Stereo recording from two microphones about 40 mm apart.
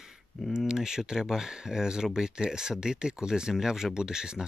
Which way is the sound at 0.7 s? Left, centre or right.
Centre.